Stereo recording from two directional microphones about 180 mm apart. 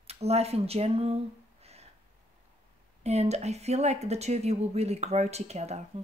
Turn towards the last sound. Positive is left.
turn(degrees=-35)  # may be behind; listen again after turning